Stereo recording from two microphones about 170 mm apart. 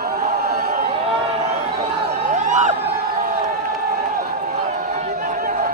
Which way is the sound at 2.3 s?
45° right (ahead or behind).